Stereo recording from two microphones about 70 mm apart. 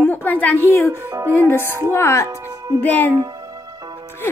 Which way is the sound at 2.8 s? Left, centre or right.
Left.